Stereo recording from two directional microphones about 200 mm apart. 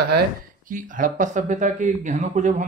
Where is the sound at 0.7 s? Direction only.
40° right (ahead or behind).